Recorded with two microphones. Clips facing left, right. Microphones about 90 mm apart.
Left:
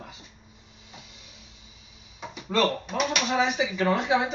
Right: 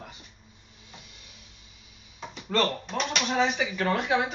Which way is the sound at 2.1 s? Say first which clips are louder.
Left 1 dB; 10° left (ahead or behind).